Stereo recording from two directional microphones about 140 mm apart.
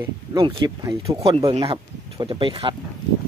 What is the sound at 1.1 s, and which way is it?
Speech, 40° right (ahead or behind).